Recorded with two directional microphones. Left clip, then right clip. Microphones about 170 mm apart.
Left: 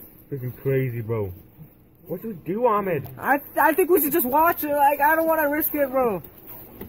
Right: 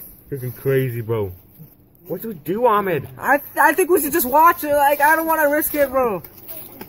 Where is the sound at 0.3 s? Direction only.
20° right (ahead or behind).